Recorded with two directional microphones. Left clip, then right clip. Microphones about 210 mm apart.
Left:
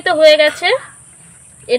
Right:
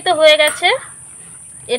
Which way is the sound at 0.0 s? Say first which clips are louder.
Left 2 dB; 25° left (ahead or behind).